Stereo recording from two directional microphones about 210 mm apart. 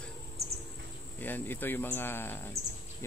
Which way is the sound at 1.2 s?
10° left (ahead or behind).